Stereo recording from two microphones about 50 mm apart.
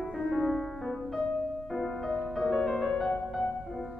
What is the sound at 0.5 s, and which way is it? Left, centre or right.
Music, centre.